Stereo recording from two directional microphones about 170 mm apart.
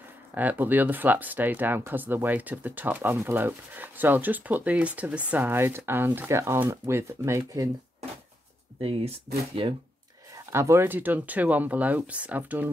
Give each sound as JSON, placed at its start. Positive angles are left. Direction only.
{"t": 0.3, "sound": "speech", "side_deg": -10}
{"t": 8.8, "sound": "speech", "side_deg": -35}
{"t": 10.3, "sound": "speech", "side_deg": -15}